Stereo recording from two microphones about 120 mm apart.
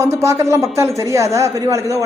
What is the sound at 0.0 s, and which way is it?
A man's voice, 25° right (ahead or behind).